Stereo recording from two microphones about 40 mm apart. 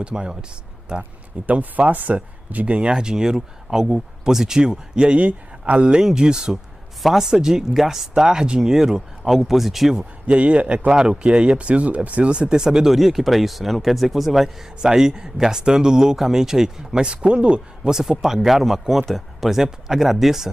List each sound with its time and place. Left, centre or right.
0.0 s speech: right
1.4 s speech: right; by 4.6 s centre
4.6 s speech: right
6.1 s speech: centre
7.7 s speech: centre
8.1 s speech: centre
9.9 s a man's voice: right
10.9 s speech: right
12.7 s speech: centre
15.0 s speech: centre
17.0 s speech: right
18.2 s speech: centre